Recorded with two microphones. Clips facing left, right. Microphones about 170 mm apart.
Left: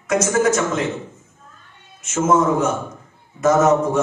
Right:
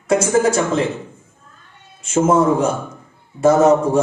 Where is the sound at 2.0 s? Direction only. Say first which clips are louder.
Right 3 dB; 30° right (ahead or behind).